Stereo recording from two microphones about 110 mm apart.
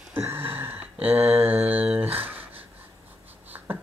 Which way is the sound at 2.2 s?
15° right (ahead or behind).